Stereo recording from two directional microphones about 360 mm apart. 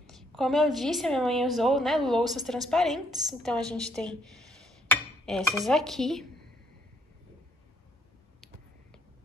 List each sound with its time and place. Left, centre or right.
0.0 s a woman's voice: centre
4.8 s dishes: centre